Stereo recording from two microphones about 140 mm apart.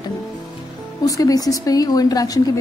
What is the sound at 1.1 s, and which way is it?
A woman's voice, 25° left (ahead or behind).